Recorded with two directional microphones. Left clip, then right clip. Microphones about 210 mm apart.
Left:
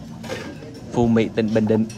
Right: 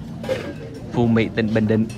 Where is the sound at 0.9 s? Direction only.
15° left (ahead or behind).